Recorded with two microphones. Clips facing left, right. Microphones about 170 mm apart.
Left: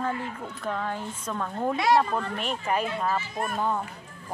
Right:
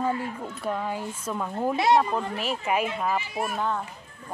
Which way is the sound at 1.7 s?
25° right (ahead or behind).